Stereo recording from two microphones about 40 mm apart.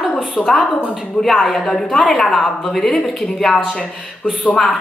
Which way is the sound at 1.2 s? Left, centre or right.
Centre.